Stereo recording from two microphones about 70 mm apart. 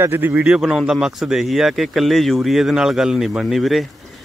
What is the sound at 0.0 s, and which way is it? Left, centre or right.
Speech, right.